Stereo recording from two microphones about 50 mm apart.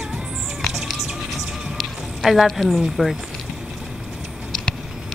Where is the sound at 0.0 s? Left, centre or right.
Centre.